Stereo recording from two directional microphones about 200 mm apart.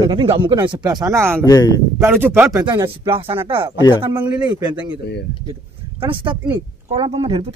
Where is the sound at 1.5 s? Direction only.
20° left (ahead or behind).